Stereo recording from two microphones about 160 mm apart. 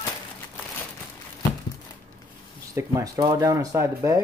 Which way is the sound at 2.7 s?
20° right (ahead or behind).